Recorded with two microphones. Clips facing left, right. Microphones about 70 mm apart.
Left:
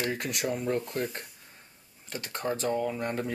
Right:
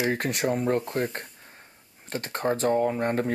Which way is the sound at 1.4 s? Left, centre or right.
Right.